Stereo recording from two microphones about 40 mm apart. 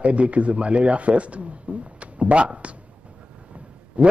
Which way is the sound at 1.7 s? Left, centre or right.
Right.